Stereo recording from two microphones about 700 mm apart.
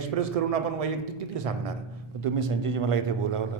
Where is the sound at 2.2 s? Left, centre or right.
Right.